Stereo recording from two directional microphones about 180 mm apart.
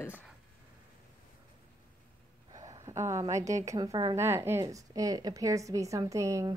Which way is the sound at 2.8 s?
15° right (ahead or behind).